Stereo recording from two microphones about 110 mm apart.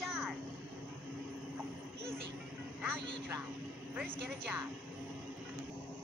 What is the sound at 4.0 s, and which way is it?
Speech, 20° right (ahead or behind).